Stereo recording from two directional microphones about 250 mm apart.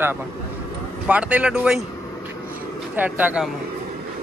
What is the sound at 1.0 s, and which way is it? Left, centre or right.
Speech, centre.